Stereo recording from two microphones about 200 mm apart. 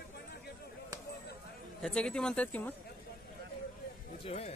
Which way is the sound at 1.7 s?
5° left (ahead or behind).